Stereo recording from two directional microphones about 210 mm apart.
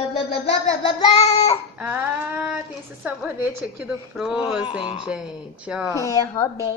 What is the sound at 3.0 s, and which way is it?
Speech, 5° right (ahead or behind).